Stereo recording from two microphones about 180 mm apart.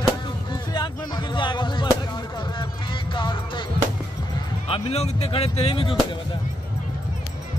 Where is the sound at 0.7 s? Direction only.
25° left (ahead or behind).